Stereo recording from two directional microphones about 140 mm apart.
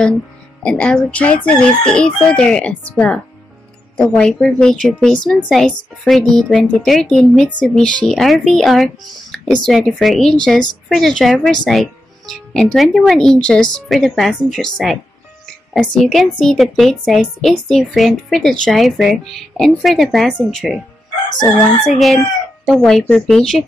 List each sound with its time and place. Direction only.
0.6 s speech: 5° left (ahead or behind)
4.2 s a woman's voice: 5° left (ahead or behind)
21.4 s chicken: 30° left (ahead or behind)
21.8 s a woman's voice: centre (ahead or behind)